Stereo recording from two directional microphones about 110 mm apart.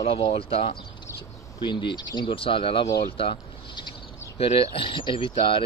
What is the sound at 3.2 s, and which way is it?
Boat, 50° left (ahead or behind).